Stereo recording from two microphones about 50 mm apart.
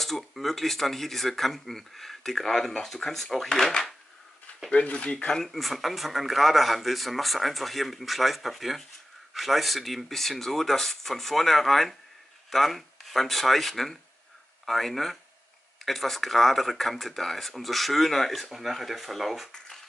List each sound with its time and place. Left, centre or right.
0.0 s speech: centre
4.6 s speech: left
5.3 s speech: centre